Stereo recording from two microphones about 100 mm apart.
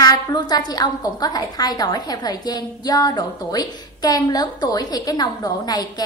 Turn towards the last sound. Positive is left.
turn(degrees=40)  # may be behind; listen again after turning